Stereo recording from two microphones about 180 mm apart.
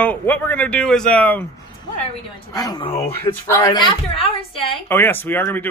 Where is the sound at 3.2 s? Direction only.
15° left (ahead or behind).